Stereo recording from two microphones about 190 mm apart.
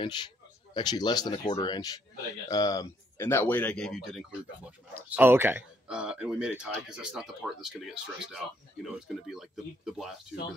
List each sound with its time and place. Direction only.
0.0 s speech: 25° left (ahead or behind); by 10.1 s centre (ahead or behind)